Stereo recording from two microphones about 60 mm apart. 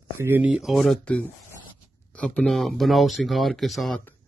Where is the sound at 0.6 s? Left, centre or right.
Centre.